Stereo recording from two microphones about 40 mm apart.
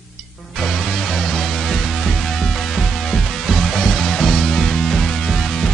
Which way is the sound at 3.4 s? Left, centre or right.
Centre.